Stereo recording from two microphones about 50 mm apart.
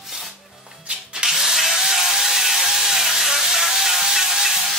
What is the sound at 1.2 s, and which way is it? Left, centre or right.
Chainsaw, centre.